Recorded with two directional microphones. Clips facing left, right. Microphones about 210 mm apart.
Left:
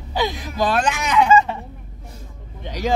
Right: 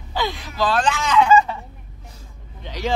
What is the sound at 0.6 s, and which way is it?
Speech, 15° left (ahead or behind).